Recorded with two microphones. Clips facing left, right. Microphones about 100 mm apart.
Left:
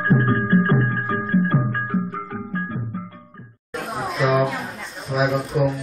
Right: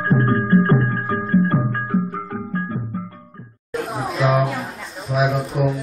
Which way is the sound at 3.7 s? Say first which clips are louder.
Right 2 dB; centre (ahead or behind).